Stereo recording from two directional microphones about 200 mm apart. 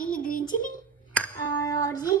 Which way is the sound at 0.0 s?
45° left (ahead or behind).